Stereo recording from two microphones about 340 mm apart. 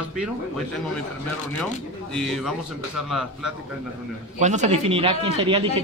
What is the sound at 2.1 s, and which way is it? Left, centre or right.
A man's voice, centre.